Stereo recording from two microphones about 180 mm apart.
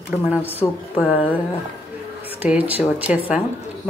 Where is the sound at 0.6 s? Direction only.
25° left (ahead or behind).